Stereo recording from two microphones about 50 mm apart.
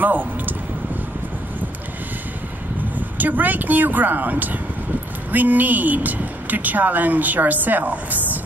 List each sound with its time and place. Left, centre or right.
0.0 s speech: right
3.2 s speech: right